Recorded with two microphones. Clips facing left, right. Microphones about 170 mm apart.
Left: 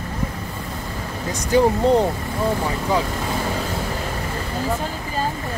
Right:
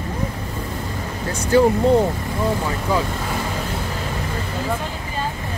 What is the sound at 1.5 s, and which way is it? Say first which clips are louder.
Speech: right 2 dB; 15° left (ahead or behind).